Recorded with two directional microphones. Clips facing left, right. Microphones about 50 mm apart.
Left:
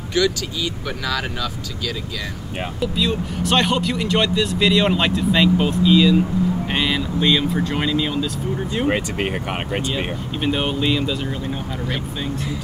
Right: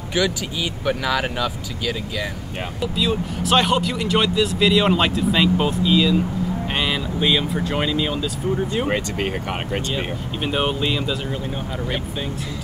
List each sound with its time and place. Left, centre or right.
0.1 s speech: centre
2.6 s speech: centre
8.9 s speech: centre
10.4 s speech: centre